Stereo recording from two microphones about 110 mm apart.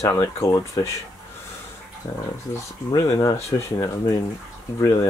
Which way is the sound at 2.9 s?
35° left (ahead or behind).